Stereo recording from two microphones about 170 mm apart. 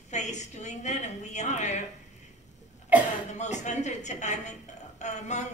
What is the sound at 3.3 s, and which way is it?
A woman's voice, 45° left (ahead or behind).